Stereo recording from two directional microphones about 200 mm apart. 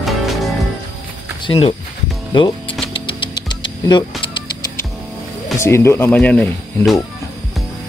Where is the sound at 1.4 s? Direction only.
30° left (ahead or behind).